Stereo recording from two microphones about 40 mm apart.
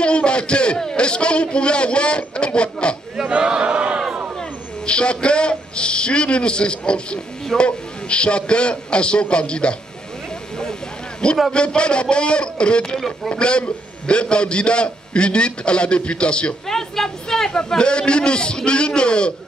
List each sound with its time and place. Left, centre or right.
0.0 s a man's voice: left
3.3 s chant: right
4.8 s a man's voice: left
10.6 s vehicle: centre
11.5 s a man's voice: left
16.6 s a man's voice: centre